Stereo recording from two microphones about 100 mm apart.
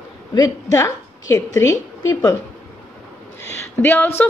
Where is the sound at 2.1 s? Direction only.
45° left (ahead or behind).